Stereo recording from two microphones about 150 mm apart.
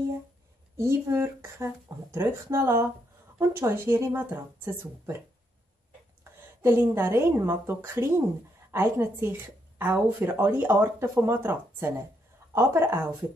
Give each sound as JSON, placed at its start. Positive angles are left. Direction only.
{"t": 0.7, "sound": "speech", "side_deg": -20}
{"t": 6.6, "sound": "speech", "side_deg": -15}